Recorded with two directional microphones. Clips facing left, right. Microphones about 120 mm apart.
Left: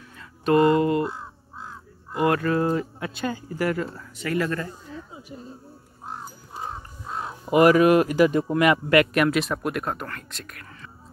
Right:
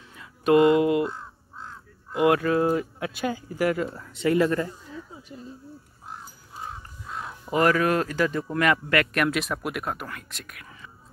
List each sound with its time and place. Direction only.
0.2 s a sound: 10° right (ahead or behind)
1.0 s crow: 10° left (ahead or behind)
2.1 s speech: 10° right (ahead or behind)
4.0 s speech: 25° right (ahead or behind)
5.3 s speech: 10° left (ahead or behind)
6.7 s crow: 30° left (ahead or behind)
7.5 s speech: 15° left (ahead or behind); by 10.9 s 5° right (ahead or behind)